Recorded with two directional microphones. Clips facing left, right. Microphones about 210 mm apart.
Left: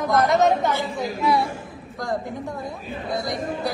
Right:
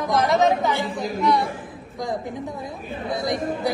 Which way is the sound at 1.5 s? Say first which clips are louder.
Even; 15° right (ahead or behind).